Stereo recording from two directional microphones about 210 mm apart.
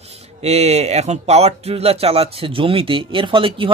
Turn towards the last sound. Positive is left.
turn(degrees=-25)  # may be behind; listen again after turning